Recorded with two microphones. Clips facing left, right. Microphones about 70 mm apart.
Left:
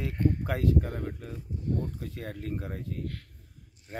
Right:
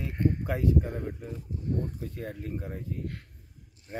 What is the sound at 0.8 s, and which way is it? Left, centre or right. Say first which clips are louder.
Speech: even; centre.